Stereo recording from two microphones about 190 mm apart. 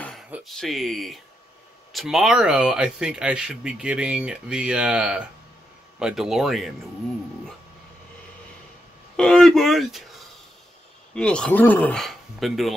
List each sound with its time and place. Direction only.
0.3 s speech: centre (ahead or behind)
9.1 s speech: 5° left (ahead or behind)